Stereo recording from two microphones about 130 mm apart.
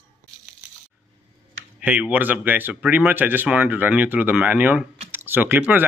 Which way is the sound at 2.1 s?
15° right (ahead or behind).